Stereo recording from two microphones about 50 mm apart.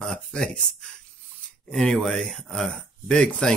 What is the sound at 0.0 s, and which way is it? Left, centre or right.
Speech, centre.